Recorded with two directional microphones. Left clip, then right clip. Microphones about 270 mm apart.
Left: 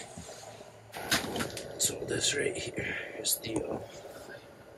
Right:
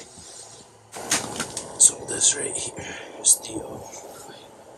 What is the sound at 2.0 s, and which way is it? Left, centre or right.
Speech, right.